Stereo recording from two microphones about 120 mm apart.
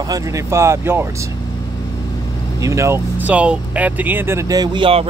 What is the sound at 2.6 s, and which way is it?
Speech, 25° right (ahead or behind).